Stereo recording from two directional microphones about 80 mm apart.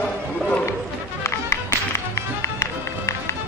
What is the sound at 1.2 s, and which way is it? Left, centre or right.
Music, left.